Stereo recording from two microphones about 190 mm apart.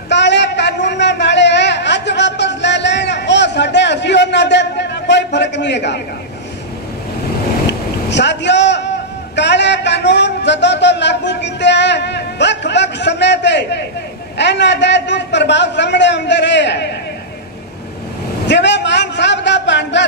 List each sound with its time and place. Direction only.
0.1 s a sound: 65° left (ahead or behind)
8.1 s a man's voice: 65° left (ahead or behind)
18.5 s a man's voice: 65° left (ahead or behind)